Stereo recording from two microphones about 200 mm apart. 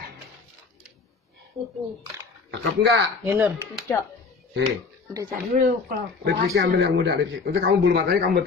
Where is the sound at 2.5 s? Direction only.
60° right (ahead or behind).